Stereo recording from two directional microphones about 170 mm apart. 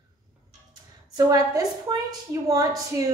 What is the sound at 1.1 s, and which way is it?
A woman's voice, 20° right (ahead or behind).